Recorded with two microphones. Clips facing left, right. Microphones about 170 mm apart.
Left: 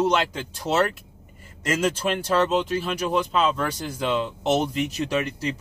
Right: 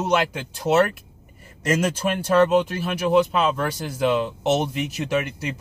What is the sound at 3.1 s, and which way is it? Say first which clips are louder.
Speech: right 5 dB; 10° right (ahead or behind).